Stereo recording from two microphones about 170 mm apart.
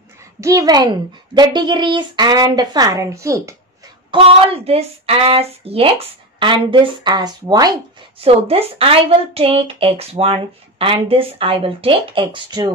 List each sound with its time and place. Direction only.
0.4 s speech: 20° right (ahead or behind)
4.1 s speech: 35° right (ahead or behind)
8.2 s a woman's voice: 35° right (ahead or behind)